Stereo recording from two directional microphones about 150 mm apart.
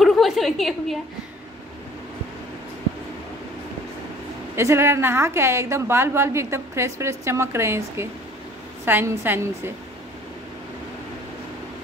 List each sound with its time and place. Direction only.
0.0 s a woman's voice: centre (ahead or behind)
4.6 s a woman's voice: 15° right (ahead or behind)